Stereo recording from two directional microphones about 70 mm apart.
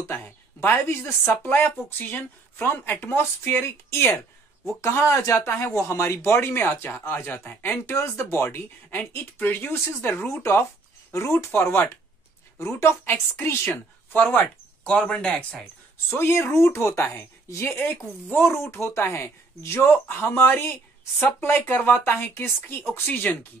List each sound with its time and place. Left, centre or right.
0.0 s a sound: left
1.4 s speech: left
7.7 s speech: left
13.1 s speech: left
16.1 s speech: left